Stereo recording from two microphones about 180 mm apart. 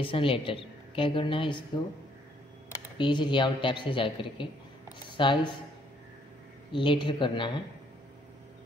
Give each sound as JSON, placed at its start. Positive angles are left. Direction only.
{"t": 0.0, "sound": "a woman's voice", "side_deg": 30}
{"t": 3.0, "sound": "a woman's voice", "side_deg": 25}
{"t": 6.7, "sound": "a woman's voice", "side_deg": 30}